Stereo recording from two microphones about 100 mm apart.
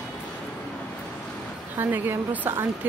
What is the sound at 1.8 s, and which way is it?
Speech, 20° right (ahead or behind).